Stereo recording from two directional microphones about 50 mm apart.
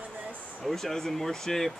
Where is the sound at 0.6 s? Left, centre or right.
Centre.